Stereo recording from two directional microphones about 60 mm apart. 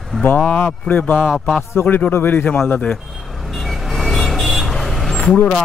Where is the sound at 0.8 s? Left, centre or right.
Left.